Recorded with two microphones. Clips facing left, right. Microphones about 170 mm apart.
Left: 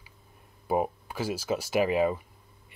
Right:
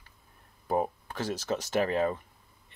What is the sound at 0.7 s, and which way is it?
Speech, 10° left (ahead or behind).